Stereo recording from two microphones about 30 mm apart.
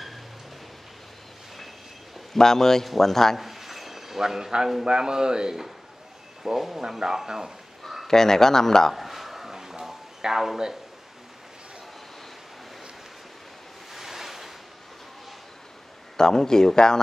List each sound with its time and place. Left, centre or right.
2.3 s speech: centre
3.3 s a sound: centre
4.8 s speech: right
6.4 s speech: centre
8.1 s speech: centre
8.9 s a sound: centre
13.9 s waves: centre
16.2 s speech: left